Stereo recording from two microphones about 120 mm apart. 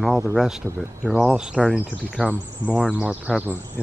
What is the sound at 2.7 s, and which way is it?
Speech, 10° right (ahead or behind).